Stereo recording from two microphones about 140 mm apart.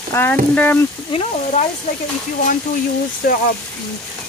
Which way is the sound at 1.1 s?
50° left (ahead or behind).